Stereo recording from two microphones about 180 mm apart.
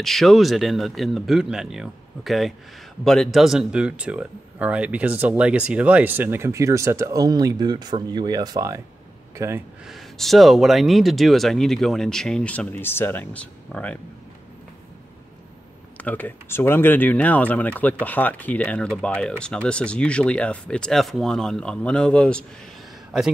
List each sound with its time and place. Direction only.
0.0 s speech: centre (ahead or behind); by 9.6 s 15° right (ahead or behind)
9.8 s speech: centre (ahead or behind)
16.0 s speech: 10° left (ahead or behind)